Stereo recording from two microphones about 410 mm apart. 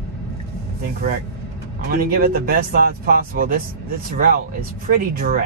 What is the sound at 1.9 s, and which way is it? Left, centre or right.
Speech, right.